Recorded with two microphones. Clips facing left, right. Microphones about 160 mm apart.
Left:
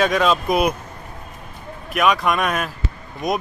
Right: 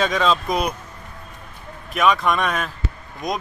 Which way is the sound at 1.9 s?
5° left (ahead or behind).